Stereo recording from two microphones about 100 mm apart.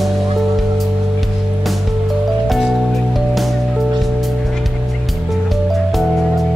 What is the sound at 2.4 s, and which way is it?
Music, centre (ahead or behind).